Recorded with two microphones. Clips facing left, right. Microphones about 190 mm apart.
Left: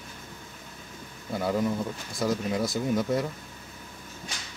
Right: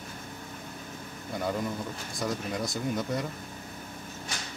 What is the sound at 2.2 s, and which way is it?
Speech, centre (ahead or behind).